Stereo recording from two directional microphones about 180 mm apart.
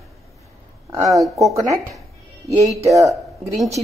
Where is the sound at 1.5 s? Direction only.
20° right (ahead or behind).